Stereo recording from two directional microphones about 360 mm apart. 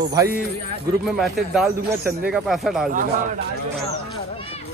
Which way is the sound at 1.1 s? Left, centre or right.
Centre.